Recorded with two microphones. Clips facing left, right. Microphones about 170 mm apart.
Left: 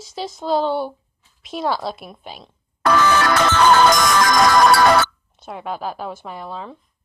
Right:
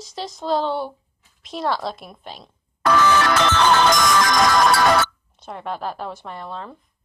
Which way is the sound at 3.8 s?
45° left (ahead or behind).